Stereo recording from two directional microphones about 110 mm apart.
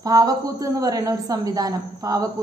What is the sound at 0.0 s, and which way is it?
A woman's voice, 35° right (ahead or behind).